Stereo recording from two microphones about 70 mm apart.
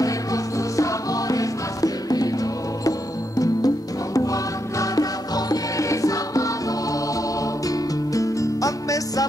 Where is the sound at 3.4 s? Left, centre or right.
Left.